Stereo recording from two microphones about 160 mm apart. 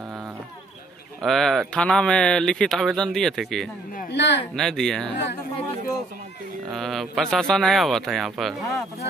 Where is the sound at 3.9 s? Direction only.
75° left (ahead or behind).